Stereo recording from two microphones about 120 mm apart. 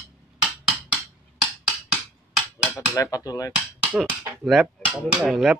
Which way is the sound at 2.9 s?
30° left (ahead or behind).